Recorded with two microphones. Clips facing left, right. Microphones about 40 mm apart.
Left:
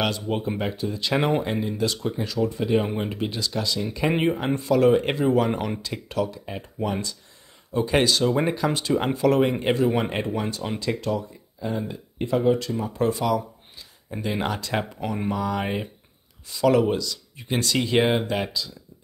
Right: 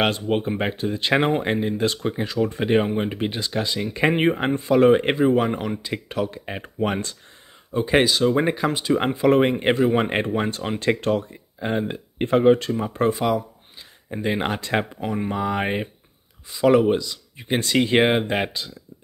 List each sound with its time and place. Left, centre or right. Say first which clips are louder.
0.0 s speech: right 4 dB; right
4.6 s speech: right 3 dB; right
5.5 s speech: right 1 dB; centre
5.8 s speech: right 1 dB; right
6.3 s speech: right 3 dB; right
8.0 s speech: right 2 dB; centre
9.4 s speech: right 2 dB; right
13.1 s speech: right 2 dB; right
16.4 s speech: right 3 dB; right